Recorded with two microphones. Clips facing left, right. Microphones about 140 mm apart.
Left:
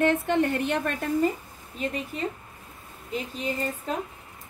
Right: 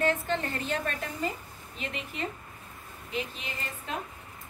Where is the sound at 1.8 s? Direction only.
45° left (ahead or behind).